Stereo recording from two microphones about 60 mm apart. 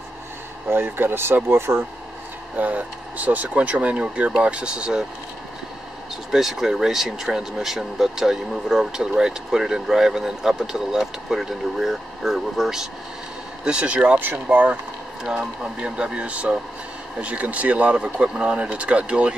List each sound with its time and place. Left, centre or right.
0.7 s speech: right
2.5 s speech: right
6.3 s speech: centre
14.2 s speech: right
15.2 s speech: centre